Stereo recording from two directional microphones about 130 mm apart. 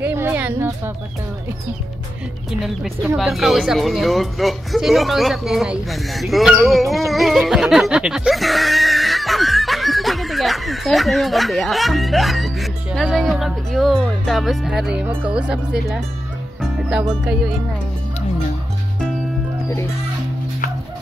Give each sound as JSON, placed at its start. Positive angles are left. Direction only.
{"t": 0.0, "sound": "speech", "side_deg": -15}
{"t": 3.2, "sound": "speech", "side_deg": 0}
{"t": 7.1, "sound": "music", "side_deg": 0}
{"t": 15.0, "sound": "speech", "side_deg": -10}
{"t": 17.2, "sound": "speech", "side_deg": -5}